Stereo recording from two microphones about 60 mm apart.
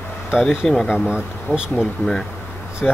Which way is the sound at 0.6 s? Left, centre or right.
Centre.